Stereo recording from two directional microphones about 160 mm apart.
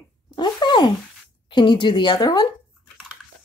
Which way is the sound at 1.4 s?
30° left (ahead or behind).